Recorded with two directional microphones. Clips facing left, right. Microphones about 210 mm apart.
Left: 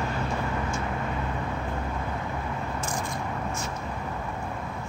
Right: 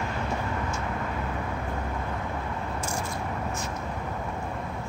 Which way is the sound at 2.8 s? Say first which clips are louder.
Even; 10° right (ahead or behind).